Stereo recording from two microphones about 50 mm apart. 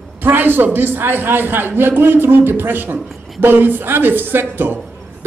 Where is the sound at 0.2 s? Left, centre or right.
Right.